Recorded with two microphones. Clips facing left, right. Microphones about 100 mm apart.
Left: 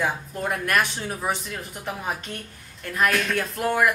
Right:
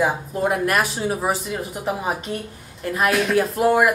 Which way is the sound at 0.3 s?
10° right (ahead or behind).